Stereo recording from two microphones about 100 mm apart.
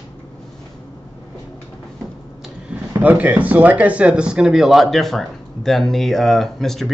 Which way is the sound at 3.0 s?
15° right (ahead or behind).